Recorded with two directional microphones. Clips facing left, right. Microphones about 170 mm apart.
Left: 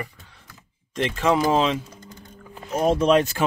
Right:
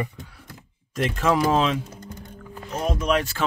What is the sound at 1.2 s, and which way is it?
Speech, centre (ahead or behind).